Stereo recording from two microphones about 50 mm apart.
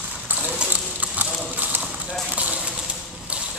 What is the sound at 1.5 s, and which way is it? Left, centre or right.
Clip-clop, right.